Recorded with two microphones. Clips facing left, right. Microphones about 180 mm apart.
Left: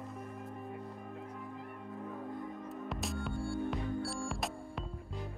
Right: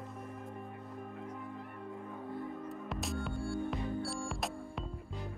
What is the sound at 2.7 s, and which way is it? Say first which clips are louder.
Music: even; centre (ahead or behind).